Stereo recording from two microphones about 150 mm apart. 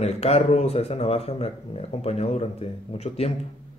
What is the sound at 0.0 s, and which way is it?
Speech, 45° left (ahead or behind).